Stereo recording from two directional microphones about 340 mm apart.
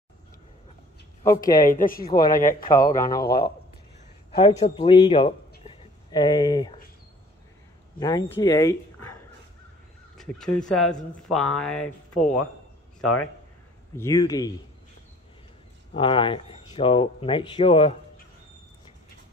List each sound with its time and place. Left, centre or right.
1.4 s speech: left
2.1 s speech: centre
2.4 s speech: left
2.9 s speech: centre
3.3 s speech: left
4.3 s speech: centre
5.5 s a sound: centre
8.0 s speech: centre
10.1 s speech: centre
13.9 s speech: centre
15.9 s speech: centre